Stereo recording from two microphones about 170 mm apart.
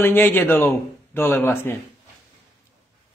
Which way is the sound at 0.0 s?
10° left (ahead or behind).